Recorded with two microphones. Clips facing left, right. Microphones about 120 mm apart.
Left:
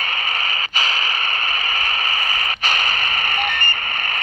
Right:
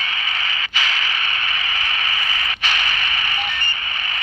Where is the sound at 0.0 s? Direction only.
45° left (ahead or behind).